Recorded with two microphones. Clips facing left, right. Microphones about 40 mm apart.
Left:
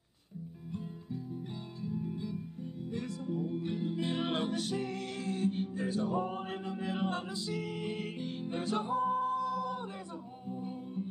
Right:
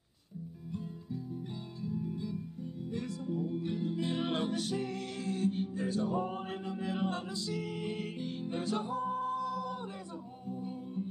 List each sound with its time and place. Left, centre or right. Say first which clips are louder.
1.8 s music: even; left
2.9 s music: even; left
5.8 s music: left 1 dB; centre